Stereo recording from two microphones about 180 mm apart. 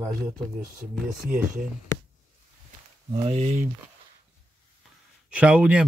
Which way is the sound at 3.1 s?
35° right (ahead or behind).